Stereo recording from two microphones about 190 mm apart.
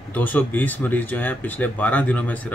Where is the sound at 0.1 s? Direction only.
10° left (ahead or behind).